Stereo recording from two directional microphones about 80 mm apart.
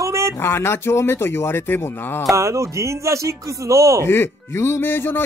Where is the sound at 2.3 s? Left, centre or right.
Right.